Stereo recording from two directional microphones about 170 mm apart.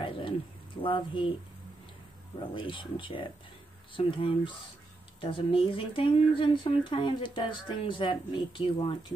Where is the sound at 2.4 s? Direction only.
30° left (ahead or behind).